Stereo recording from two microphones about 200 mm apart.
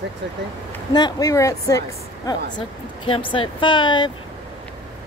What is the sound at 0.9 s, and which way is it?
A woman's voice, 20° left (ahead or behind).